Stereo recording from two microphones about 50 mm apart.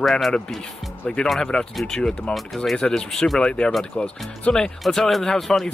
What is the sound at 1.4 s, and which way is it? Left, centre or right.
Speech, centre.